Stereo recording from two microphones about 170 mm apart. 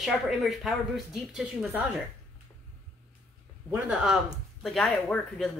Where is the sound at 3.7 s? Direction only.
5° right (ahead or behind).